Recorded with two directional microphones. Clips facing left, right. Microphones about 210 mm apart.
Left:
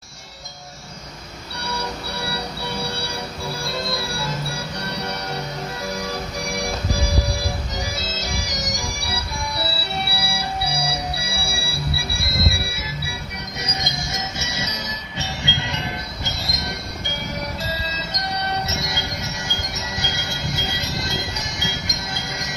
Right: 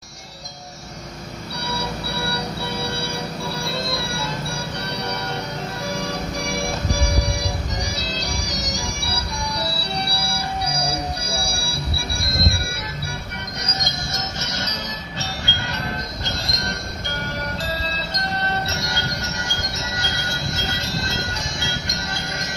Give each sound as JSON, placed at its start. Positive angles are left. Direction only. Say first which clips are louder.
{"t": 8.7, "sound": "music", "louder": "right 1 dB", "side_deg": 5}
{"t": 18.3, "sound": "music", "louder": "left 1 dB", "side_deg": 10}
{"t": 21.8, "sound": "music", "louder": "right 1 dB", "side_deg": 0}